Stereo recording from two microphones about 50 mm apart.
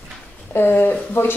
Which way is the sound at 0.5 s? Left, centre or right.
Left.